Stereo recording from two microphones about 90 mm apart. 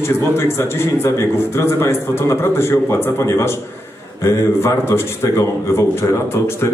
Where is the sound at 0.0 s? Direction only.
30° left (ahead or behind).